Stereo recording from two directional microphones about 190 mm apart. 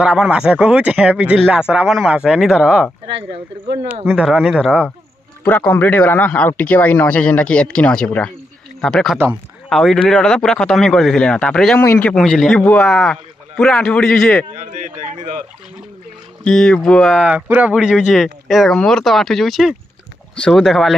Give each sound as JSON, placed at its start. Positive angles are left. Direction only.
{"t": 0.0, "sound": "speech", "side_deg": -5}
{"t": 5.4, "sound": "a man's voice", "side_deg": 10}
{"t": 14.5, "sound": "speech", "side_deg": -40}
{"t": 16.4, "sound": "speech", "side_deg": 5}